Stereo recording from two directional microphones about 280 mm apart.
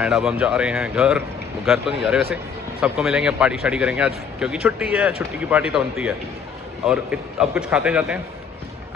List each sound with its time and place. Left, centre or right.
0.0 s a man's voice: centre